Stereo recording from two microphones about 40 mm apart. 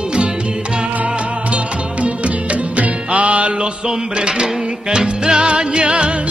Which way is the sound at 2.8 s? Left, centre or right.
Right.